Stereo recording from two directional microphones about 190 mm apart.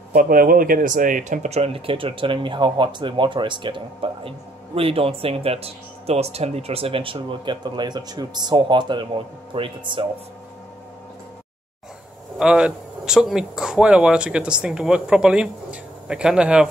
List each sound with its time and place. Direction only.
0.1 s speech: 45° right (ahead or behind); by 10.0 s 25° right (ahead or behind)
12.4 s speech: 5° right (ahead or behind)